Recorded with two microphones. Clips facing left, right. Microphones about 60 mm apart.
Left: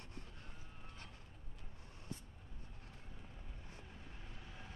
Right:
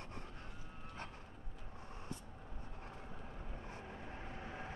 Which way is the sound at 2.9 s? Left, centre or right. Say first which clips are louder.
Right 7 dB; right.